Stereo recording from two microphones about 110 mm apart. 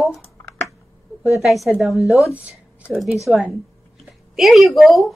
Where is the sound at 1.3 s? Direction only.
Centre (ahead or behind).